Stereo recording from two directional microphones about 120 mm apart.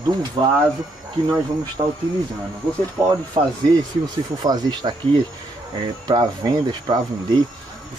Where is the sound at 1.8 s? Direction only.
50° right (ahead or behind).